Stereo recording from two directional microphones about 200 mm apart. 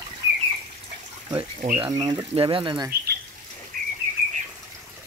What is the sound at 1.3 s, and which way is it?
Speech, 30° right (ahead or behind).